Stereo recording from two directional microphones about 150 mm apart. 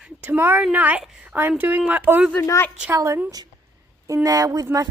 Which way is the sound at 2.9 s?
20° right (ahead or behind).